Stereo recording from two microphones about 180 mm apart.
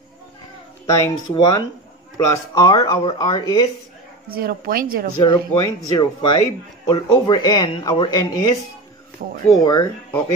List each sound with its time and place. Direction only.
0.8 s speech: 15° left (ahead or behind)
4.3 s speech: 55° right (ahead or behind)
5.2 s speech: 20° left (ahead or behind)
9.2 s speech: 55° right (ahead or behind)
9.6 s speech: 20° left (ahead or behind)